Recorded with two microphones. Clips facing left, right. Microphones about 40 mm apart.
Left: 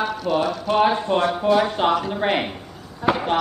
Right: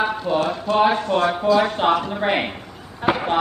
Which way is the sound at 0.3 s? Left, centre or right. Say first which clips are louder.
Left 1 dB; centre.